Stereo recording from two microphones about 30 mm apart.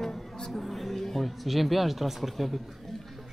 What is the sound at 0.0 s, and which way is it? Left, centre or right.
Music, centre.